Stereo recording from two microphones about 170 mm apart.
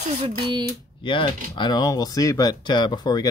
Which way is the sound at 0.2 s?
25° right (ahead or behind).